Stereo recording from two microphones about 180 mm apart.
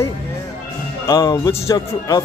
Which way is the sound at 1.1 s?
20° left (ahead or behind).